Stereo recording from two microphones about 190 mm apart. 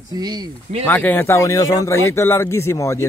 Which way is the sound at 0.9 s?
10° left (ahead or behind).